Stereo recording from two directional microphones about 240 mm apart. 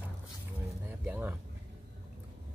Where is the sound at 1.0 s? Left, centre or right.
Centre.